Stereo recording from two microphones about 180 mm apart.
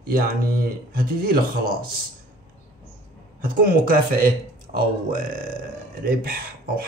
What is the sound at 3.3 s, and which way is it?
Speech, 55° right (ahead or behind).